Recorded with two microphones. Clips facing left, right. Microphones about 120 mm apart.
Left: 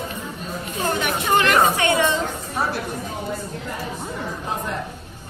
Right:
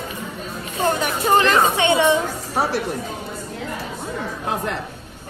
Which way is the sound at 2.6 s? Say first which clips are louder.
Right 4 dB; 70° right (ahead or behind).